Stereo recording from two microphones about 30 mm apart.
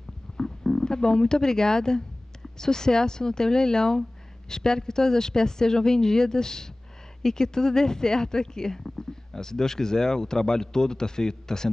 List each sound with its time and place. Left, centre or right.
0.4 s speech: centre